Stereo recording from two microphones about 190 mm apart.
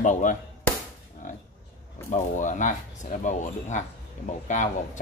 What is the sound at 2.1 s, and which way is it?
Speech, 40° left (ahead or behind).